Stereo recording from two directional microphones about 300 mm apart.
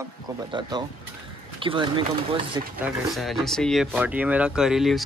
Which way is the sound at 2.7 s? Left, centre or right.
Centre.